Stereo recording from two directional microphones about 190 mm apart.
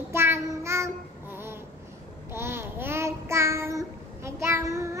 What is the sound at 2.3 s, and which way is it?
Child singing, 15° right (ahead or behind).